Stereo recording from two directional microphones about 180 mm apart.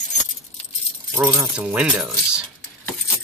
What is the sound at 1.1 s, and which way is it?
Speech, 10° right (ahead or behind).